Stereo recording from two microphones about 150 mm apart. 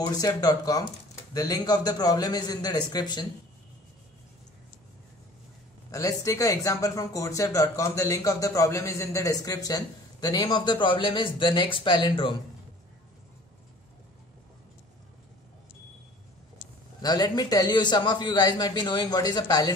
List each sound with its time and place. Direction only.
0.0 s speech: 25° left (ahead or behind)
5.9 s speech: 25° left (ahead or behind)
17.0 s speech: 25° left (ahead or behind)